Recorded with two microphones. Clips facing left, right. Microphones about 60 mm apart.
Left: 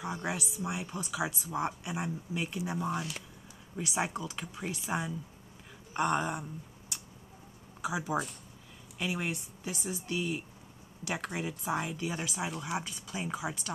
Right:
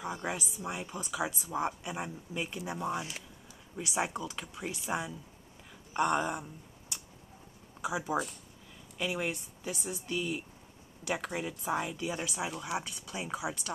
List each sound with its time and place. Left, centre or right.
0.0 s speech: centre
7.8 s speech: centre